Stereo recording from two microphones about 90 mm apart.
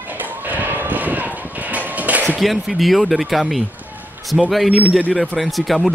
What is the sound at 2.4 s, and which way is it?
Speech, centre (ahead or behind).